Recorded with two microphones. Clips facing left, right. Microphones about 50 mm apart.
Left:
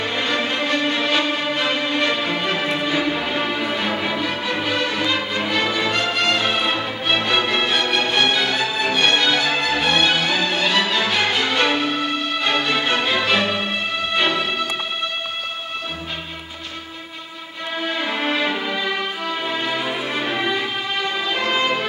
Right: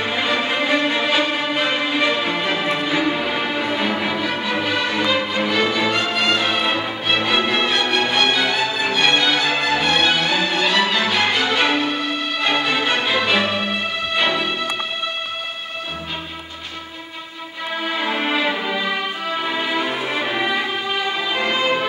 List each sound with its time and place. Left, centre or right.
0.0 s music: centre
17.8 s music: centre